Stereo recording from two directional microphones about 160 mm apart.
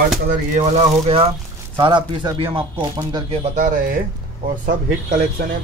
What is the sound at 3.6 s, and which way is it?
Speech, 55° right (ahead or behind).